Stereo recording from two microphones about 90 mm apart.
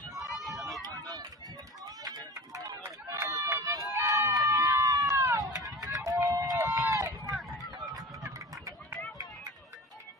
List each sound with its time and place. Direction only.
0.6 s run: centre (ahead or behind)
0.8 s run: 45° right (ahead or behind)
2.8 s run: 30° right (ahead or behind)
4.3 s a sound: 45° right (ahead or behind)
5.5 s run: 40° right (ahead or behind)
7.3 s run: centre (ahead or behind)
7.7 s a sound: 45° right (ahead or behind)